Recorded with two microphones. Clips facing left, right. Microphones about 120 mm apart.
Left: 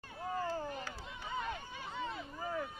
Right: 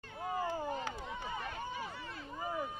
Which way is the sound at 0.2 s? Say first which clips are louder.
Right 1 dB; 20° right (ahead or behind).